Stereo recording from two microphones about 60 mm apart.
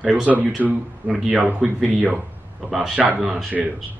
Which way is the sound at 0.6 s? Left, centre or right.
Right.